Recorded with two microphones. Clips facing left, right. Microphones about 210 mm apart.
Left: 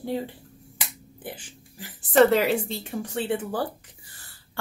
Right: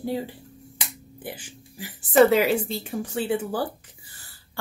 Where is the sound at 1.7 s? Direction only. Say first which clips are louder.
Right 1 dB; 5° right (ahead or behind).